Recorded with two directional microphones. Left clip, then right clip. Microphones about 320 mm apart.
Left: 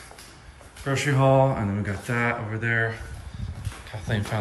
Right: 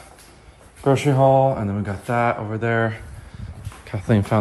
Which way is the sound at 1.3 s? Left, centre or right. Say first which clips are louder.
Right 3 dB; centre.